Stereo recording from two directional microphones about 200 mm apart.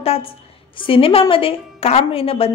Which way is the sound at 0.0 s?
30° left (ahead or behind).